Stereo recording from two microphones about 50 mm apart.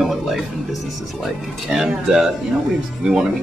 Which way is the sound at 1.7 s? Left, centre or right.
Centre.